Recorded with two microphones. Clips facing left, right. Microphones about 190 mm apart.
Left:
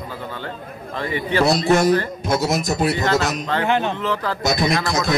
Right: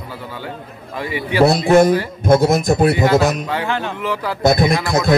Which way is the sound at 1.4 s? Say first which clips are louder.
Right 5 dB; 55° right (ahead or behind).